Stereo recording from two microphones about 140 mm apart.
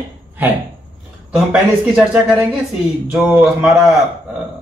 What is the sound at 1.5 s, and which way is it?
A man's voice, 5° right (ahead or behind).